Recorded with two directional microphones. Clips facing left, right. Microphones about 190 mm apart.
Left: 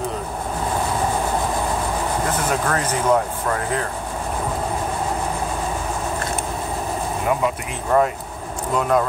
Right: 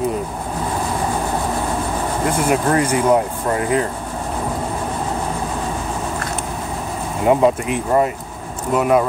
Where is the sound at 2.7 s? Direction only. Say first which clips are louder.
Right 2 dB; 10° right (ahead or behind).